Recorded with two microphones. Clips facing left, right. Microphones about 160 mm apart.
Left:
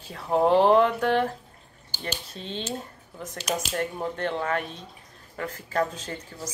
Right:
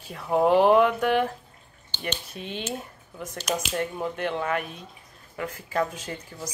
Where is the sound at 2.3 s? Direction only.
10° right (ahead or behind).